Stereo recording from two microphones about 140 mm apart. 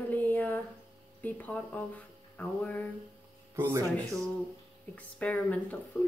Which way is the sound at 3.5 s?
15° right (ahead or behind).